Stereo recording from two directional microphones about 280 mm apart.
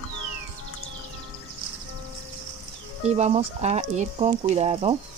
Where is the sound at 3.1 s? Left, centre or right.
Right.